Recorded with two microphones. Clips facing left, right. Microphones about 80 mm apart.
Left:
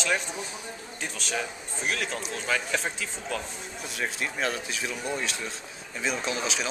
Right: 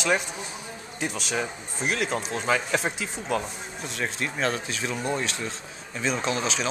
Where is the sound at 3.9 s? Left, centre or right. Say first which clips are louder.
Right 1 dB; centre.